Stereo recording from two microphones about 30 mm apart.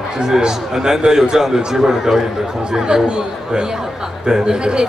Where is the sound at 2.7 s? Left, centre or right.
Right.